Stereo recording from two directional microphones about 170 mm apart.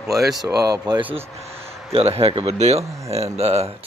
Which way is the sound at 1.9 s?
35° right (ahead or behind).